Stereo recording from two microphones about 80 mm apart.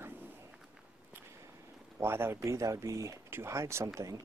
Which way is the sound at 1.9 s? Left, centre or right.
Right.